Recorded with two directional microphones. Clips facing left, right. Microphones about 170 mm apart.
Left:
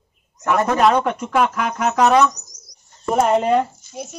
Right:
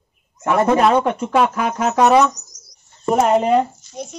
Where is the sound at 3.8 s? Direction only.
5° left (ahead or behind).